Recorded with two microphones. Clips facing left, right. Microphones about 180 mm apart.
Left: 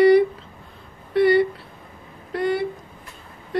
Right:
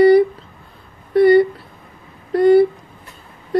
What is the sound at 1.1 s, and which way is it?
Speech, 40° right (ahead or behind).